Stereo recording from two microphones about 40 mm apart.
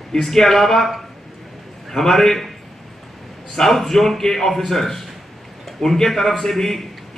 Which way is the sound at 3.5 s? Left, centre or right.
Centre.